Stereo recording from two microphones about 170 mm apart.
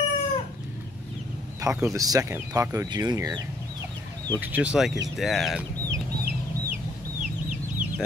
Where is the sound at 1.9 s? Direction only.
20° right (ahead or behind).